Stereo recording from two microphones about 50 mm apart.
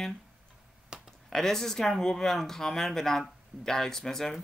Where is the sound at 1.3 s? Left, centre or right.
Centre.